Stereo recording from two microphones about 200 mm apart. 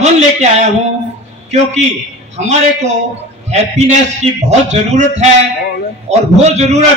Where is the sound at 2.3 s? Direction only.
35° right (ahead or behind).